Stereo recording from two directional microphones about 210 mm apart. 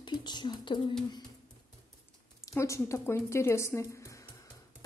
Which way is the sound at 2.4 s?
15° left (ahead or behind).